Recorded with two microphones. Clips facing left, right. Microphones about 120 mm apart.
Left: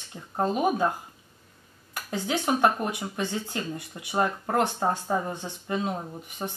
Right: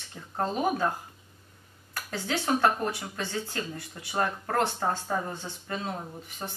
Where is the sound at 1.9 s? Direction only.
15° left (ahead or behind).